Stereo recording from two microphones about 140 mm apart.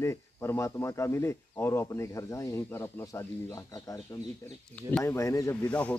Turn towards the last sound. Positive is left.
turn(degrees=10)  # may be behind; listen again after turning